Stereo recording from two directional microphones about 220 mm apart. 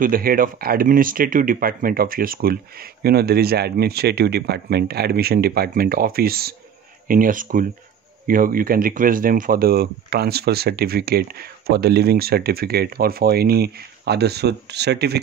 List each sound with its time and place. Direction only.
0.0 s speech: 40° right (ahead or behind)